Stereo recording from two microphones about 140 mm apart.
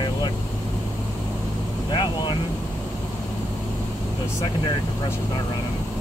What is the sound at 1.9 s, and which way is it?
Vehicle, 35° left (ahead or behind).